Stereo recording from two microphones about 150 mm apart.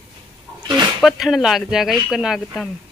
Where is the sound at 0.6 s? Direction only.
30° right (ahead or behind).